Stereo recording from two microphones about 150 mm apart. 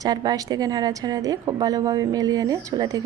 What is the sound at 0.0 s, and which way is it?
A woman's voice, 25° right (ahead or behind).